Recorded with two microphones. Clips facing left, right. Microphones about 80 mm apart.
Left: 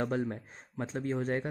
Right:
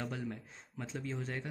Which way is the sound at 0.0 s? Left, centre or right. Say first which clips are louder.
Left 8 dB; left.